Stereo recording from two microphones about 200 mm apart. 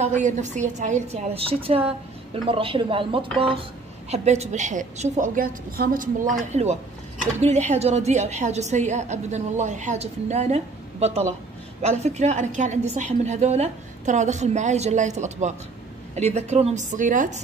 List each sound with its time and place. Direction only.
0.0 s a woman's voice: 35° right (ahead or behind)
6.5 s a woman's voice: 35° right (ahead or behind)